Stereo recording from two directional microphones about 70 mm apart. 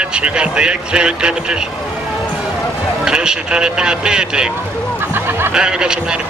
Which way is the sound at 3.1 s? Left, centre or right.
Centre.